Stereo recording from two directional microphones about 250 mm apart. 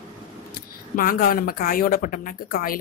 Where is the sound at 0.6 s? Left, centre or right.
Left.